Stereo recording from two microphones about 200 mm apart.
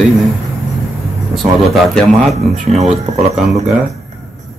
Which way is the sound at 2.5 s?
30° right (ahead or behind).